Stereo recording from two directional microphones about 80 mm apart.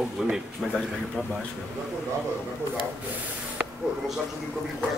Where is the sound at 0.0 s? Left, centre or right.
Centre.